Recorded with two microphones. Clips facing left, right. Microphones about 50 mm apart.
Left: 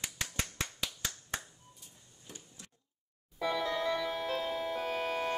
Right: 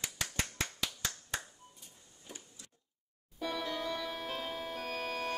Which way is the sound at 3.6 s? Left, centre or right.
Left.